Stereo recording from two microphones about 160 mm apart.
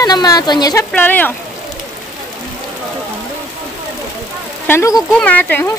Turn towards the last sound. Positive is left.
turn(degrees=10)  # may be behind; listen again after turning